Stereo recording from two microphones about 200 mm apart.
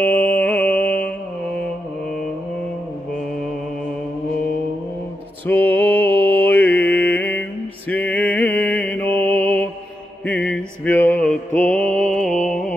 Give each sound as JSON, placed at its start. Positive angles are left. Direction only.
{"t": 0.0, "sound": "mantra", "side_deg": 10}
{"t": 5.5, "sound": "mantra", "side_deg": 10}
{"t": 9.0, "sound": "mantra", "side_deg": -30}
{"t": 9.3, "sound": "mantra", "side_deg": 10}